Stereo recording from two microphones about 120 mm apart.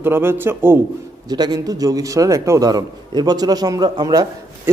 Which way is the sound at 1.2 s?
35° right (ahead or behind).